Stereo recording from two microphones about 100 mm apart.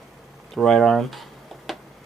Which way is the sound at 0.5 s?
5° left (ahead or behind).